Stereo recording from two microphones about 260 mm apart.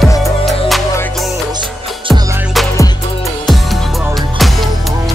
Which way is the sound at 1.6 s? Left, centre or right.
Centre.